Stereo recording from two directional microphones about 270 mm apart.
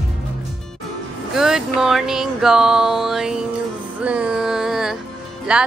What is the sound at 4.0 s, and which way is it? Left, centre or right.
Music, centre.